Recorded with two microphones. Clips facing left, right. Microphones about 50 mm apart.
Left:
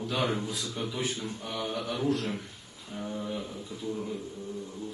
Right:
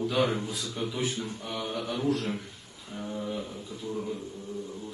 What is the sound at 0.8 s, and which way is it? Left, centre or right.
Speech, centre.